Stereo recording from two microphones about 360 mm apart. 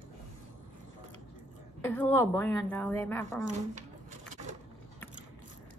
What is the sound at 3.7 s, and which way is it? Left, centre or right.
Wood, centre.